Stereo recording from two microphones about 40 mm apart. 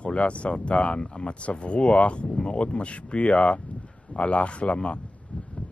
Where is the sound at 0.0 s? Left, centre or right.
Left.